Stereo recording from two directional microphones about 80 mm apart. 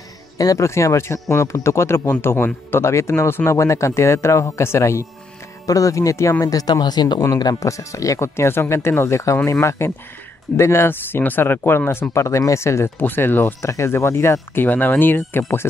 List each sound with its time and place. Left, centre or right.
0.4 s speech: left
6.4 s speech: left
7.3 s speech: left
13.7 s speech: left